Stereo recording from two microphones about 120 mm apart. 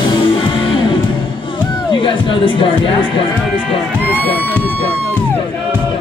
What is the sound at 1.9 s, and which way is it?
Speech, 45° left (ahead or behind).